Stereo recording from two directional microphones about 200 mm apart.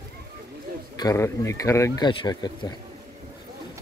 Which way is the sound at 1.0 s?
15° left (ahead or behind).